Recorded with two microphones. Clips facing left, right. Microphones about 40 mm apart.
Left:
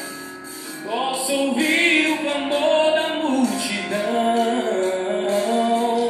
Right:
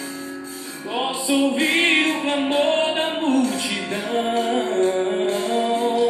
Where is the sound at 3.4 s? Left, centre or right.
Right.